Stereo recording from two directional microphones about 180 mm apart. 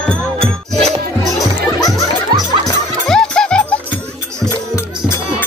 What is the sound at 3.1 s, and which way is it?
Music, 5° left (ahead or behind).